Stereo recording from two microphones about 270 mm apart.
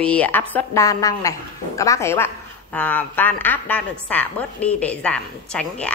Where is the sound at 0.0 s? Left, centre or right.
Centre.